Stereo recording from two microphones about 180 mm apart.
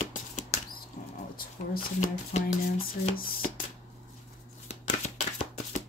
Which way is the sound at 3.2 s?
50° left (ahead or behind).